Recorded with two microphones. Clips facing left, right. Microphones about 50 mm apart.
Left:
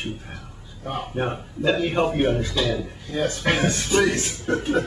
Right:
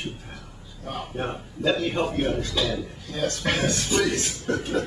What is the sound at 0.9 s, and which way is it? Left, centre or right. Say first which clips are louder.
Speech: left 4 dB; centre.